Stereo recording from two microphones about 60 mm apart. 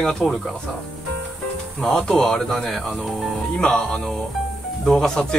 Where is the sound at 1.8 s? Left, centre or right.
Centre.